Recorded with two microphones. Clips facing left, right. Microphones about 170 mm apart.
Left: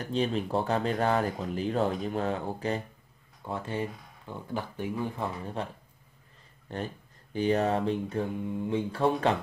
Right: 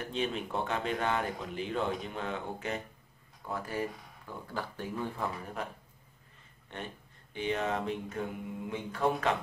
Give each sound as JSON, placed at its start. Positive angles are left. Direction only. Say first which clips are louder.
{"t": 0.1, "sound": "speech", "louder": "left 7 dB", "side_deg": 35}
{"t": 5.6, "sound": "speech", "louder": "left 4 dB", "side_deg": 30}